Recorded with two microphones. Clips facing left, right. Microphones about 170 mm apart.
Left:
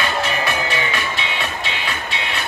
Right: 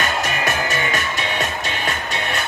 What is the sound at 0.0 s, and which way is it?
Music, 45° right (ahead or behind).